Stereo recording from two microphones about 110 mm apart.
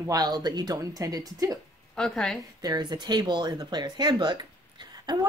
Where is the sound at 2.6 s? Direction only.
40° right (ahead or behind).